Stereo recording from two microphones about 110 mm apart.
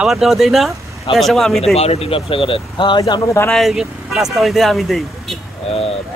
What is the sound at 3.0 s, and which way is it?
Speech, 30° left (ahead or behind).